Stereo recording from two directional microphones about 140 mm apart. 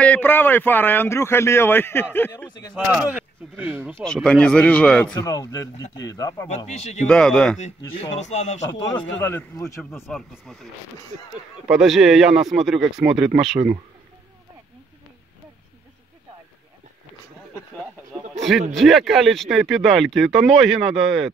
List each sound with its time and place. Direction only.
0.0 s speech: 15° left (ahead or behind)
2.7 s speech: 5° right (ahead or behind)
4.0 s speech: 5° left (ahead or behind)
5.1 s speech: 25° left (ahead or behind)
6.6 s speech: 50° left (ahead or behind)
7.1 s speech: 5° left (ahead or behind)
8.1 s speech: 55° left (ahead or behind)
8.9 s speech: 15° left (ahead or behind)
9.8 s speech: centre (ahead or behind)
11.7 s speech: centre (ahead or behind)
18.3 s speech: centre (ahead or behind)